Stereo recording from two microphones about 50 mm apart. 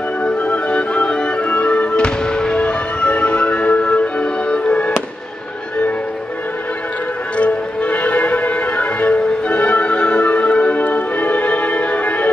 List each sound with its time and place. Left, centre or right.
0.2 s music: left
7.3 s music: left